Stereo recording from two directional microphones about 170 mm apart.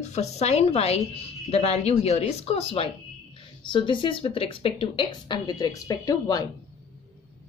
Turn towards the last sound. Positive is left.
turn(degrees=20)  # may be behind; listen again after turning